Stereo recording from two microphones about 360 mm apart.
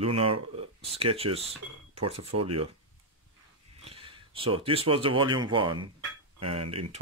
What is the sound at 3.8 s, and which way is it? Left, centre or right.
Speech, centre.